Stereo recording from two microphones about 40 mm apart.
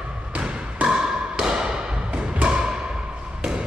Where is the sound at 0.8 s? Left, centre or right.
Centre.